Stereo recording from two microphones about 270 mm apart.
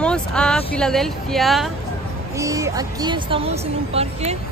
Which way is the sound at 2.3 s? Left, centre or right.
Centre.